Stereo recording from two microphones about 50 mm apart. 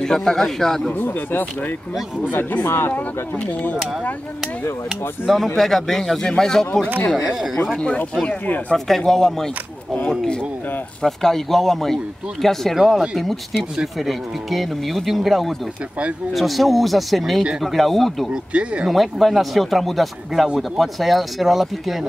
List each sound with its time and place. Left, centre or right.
0.0 s speech: centre
0.9 s speech: left
2.6 s speech: left
5.2 s speech: centre
8.3 s speech: left
8.7 s speech: centre
11.0 s speech: centre
18.3 s speech: right
18.9 s speech: centre